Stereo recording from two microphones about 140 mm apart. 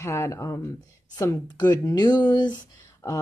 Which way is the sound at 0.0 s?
20° left (ahead or behind).